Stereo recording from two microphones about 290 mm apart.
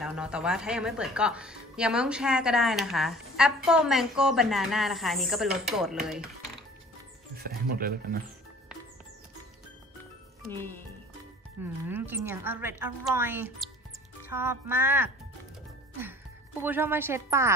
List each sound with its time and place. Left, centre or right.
0.0 s speech: centre
7.3 s speech: right
10.4 s speech: centre
11.6 s a woman's voice: centre
16.6 s a woman's voice: centre